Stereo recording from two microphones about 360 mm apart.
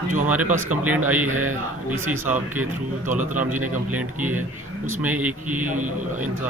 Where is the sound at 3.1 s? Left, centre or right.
Right.